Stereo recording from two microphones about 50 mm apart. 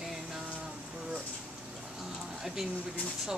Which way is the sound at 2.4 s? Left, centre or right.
Centre.